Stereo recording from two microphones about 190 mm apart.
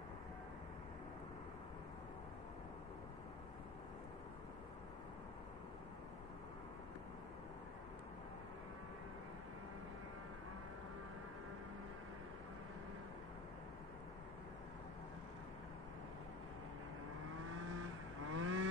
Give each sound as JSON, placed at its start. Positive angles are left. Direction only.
{"t": 18.3, "sound": "vehicle", "side_deg": -90}